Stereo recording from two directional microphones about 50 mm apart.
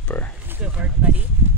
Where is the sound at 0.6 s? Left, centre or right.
Right.